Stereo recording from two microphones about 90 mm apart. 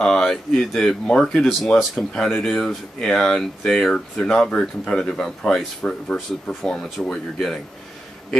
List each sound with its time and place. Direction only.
0.0 s speech: 5° left (ahead or behind)